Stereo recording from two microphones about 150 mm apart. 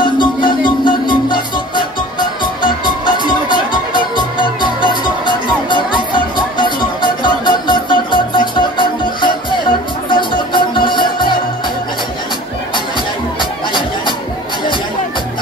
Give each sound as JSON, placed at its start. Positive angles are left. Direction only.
{"t": 0.0, "sound": "music", "side_deg": 30}
{"t": 13.4, "sound": "music", "side_deg": 30}